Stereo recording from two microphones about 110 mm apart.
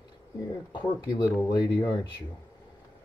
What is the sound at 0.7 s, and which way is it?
Speech, 30° left (ahead or behind).